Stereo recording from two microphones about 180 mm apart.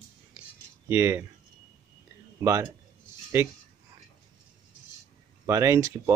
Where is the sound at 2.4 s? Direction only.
15° right (ahead or behind).